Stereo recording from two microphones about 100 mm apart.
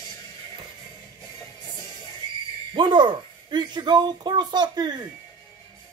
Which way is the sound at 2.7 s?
55° right (ahead or behind).